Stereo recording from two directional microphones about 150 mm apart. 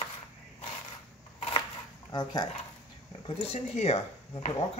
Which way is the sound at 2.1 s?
30° left (ahead or behind).